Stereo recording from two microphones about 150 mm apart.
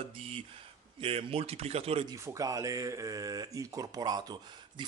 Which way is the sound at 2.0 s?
20° right (ahead or behind).